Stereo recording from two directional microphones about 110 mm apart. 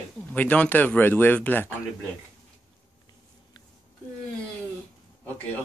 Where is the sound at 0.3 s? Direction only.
10° left (ahead or behind).